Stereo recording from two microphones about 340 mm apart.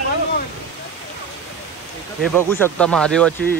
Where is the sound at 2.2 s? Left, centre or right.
Centre.